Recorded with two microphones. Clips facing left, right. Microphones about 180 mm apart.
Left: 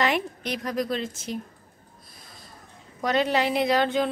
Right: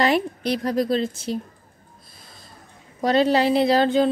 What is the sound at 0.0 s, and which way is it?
A woman's voice, 35° right (ahead or behind).